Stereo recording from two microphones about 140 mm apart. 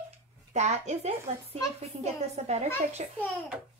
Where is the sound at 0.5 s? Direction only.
55° right (ahead or behind).